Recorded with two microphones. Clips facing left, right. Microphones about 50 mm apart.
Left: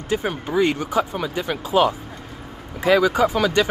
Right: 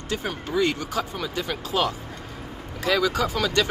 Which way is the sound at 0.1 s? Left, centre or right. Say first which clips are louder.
Left 5 dB; centre.